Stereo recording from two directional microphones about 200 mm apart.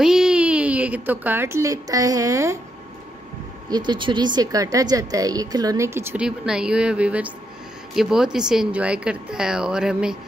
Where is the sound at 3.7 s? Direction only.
20° right (ahead or behind).